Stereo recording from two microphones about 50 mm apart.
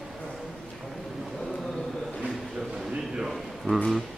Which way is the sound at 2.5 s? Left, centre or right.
Centre.